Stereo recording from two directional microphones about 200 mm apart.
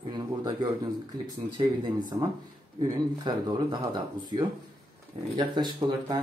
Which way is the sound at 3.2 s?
20° right (ahead or behind).